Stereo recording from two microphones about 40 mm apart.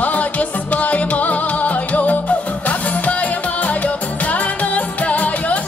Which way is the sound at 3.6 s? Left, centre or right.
Left.